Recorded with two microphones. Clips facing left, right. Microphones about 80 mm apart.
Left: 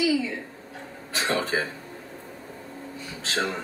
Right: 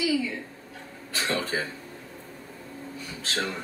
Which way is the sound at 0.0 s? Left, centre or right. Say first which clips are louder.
Left 2 dB; left.